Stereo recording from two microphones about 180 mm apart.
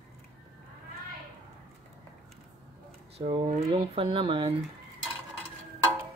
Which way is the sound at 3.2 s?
35° right (ahead or behind).